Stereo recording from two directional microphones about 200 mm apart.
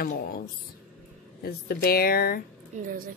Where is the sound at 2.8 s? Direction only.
45° right (ahead or behind).